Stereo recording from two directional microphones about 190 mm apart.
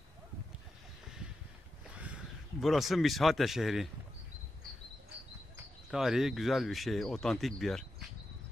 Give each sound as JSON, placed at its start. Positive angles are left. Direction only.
{"t": 2.0, "sound": "speech", "side_deg": -5}
{"t": 5.9, "sound": "speech", "side_deg": 0}